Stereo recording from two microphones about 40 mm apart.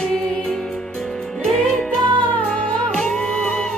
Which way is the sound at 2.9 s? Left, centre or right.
Left.